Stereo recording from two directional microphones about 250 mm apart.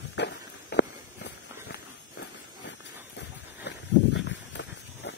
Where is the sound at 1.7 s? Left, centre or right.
Left.